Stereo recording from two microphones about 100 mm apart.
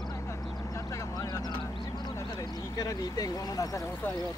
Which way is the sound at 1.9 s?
45° left (ahead or behind).